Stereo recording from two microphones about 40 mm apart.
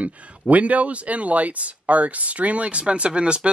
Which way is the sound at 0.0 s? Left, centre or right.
Right.